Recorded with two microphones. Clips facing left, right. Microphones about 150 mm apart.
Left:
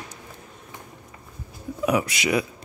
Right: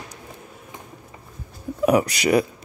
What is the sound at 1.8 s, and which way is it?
Speech, 40° right (ahead or behind).